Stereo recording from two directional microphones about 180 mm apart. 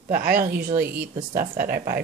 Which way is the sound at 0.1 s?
50° right (ahead or behind).